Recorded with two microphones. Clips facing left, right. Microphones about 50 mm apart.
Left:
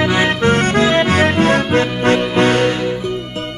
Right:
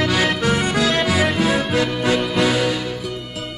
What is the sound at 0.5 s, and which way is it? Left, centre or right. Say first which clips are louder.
Accordion: left 5 dB; left.